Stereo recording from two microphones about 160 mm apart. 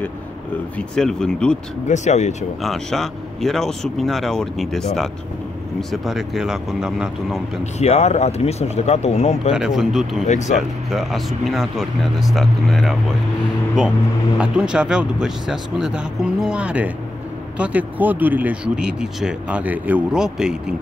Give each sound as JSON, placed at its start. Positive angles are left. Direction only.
{"t": 0.7, "sound": "speech", "side_deg": 5}
{"t": 1.9, "sound": "speech", "side_deg": 45}
{"t": 2.6, "sound": "speech", "side_deg": 0}
{"t": 7.8, "sound": "speech", "side_deg": 45}
{"t": 9.5, "sound": "speech", "side_deg": -5}
{"t": 10.2, "sound": "speech", "side_deg": 45}
{"t": 10.9, "sound": "speech", "side_deg": 0}